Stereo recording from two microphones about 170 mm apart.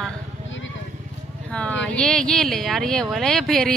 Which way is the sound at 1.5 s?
5° left (ahead or behind).